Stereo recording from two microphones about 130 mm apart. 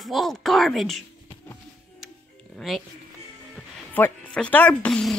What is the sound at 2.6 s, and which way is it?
Speech, centre (ahead or behind).